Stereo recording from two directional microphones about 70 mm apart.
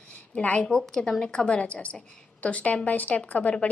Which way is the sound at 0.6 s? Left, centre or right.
Centre.